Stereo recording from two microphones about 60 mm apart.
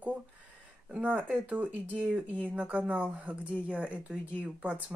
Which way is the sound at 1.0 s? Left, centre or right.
Right.